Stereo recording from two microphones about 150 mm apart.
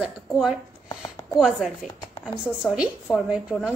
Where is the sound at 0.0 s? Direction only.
5° right (ahead or behind).